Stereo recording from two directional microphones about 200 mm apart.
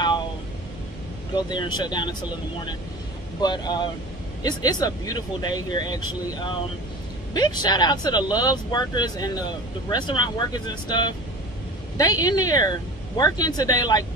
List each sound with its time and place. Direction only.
1.3 s speech: 20° left (ahead or behind)
3.4 s speech: 20° left (ahead or behind)